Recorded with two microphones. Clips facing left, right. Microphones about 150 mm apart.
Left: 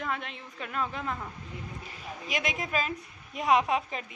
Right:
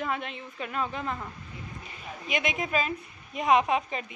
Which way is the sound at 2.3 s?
Centre (ahead or behind).